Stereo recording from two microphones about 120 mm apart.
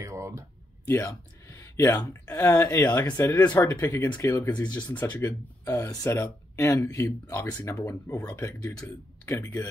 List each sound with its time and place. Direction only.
0.0 s a sound: 25° right (ahead or behind)
0.8 s speech: 25° left (ahead or behind)
4.5 s speech: 10° left (ahead or behind)
5.1 s speech: 20° left (ahead or behind)